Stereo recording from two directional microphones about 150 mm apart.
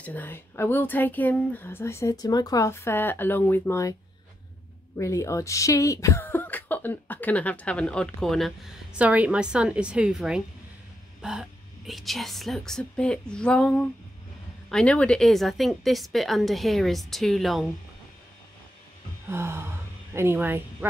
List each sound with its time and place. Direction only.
0.0 s speech: 10° left (ahead or behind)
4.9 s a woman's voice: 20° left (ahead or behind); by 17.6 s centre (ahead or behind)
19.2 s speech: 15° right (ahead or behind)